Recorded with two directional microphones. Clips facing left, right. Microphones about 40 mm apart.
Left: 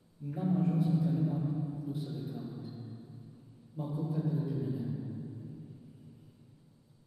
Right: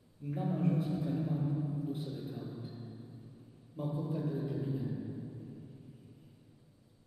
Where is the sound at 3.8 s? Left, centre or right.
Right.